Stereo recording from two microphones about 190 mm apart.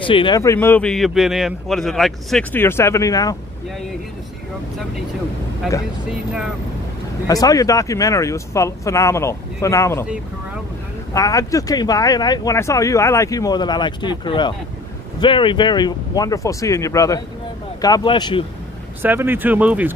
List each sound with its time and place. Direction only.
0.0 s speech: 25° left (ahead or behind)
0.4 s a man's voice: 15° left (ahead or behind)
6.0 s speech: 5° right (ahead or behind)
7.2 s a man's voice: 20° left (ahead or behind)
11.1 s speech: 20° left (ahead or behind)
19.0 s speech: 10° right (ahead or behind)